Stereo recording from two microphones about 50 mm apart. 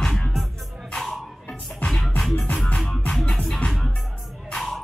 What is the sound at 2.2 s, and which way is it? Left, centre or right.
Music, centre.